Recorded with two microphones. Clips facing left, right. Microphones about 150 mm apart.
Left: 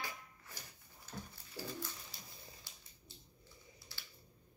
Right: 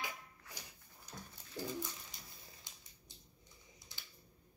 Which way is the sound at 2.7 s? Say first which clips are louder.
Even; 20° right (ahead or behind).